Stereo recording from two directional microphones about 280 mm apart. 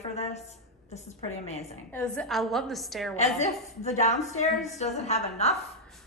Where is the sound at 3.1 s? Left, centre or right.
Left.